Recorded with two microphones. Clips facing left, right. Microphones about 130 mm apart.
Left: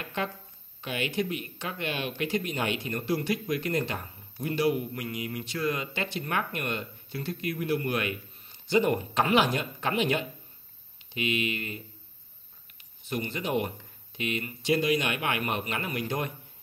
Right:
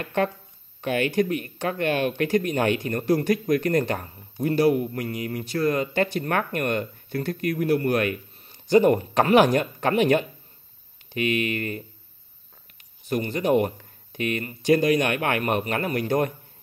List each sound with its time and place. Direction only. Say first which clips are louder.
0.0 s speech: right 8 dB; 50° right (ahead or behind)
13.1 s speech: right 8 dB; 45° right (ahead or behind)